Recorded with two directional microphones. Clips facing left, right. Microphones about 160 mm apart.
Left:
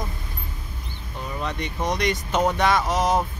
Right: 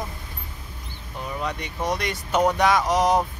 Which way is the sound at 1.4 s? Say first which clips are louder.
Left 1 dB; 10° right (ahead or behind).